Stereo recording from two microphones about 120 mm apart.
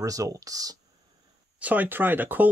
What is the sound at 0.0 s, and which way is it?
Speech, 30° right (ahead or behind).